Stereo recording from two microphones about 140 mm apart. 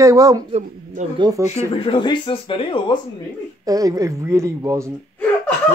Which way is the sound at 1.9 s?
35° left (ahead or behind).